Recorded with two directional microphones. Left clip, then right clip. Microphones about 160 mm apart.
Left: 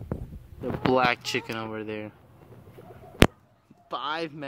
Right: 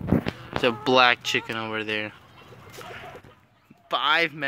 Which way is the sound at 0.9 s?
Centre (ahead or behind).